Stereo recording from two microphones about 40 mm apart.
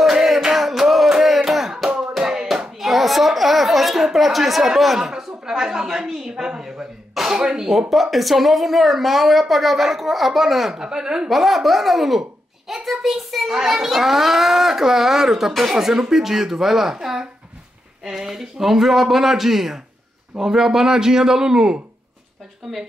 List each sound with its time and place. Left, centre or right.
0.0 s music: centre
1.1 s a sound: centre
2.0 s hands: centre
2.5 s a child's voice: centre
7.9 s speech: centre
10.8 s a child's voice: centre
11.2 s a child's voice: centre